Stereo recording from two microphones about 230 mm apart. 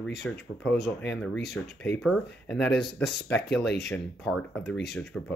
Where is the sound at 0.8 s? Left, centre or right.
Left.